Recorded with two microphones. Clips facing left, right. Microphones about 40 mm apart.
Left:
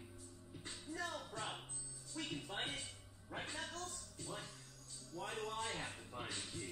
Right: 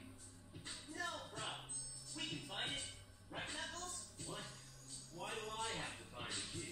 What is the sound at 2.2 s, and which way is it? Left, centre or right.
Music, left.